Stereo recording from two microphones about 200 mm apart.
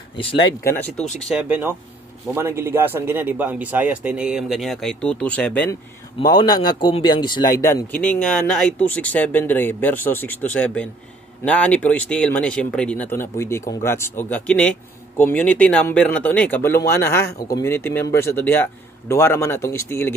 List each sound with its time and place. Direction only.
0.2 s speech: 25° left (ahead or behind)
0.7 s speech: 10° left (ahead or behind)
1.3 s a man's voice: 5° right (ahead or behind)
6.1 s speech: 20° left (ahead or behind)